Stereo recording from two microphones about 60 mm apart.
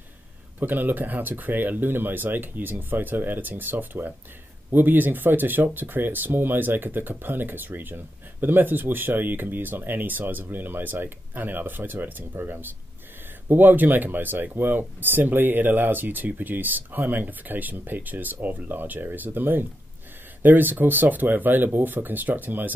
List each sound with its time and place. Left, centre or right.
0.6 s speech: right